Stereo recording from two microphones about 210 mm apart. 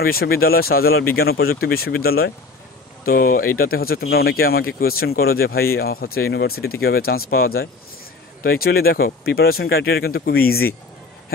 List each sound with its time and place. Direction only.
0.0 s speech: 45° left (ahead or behind)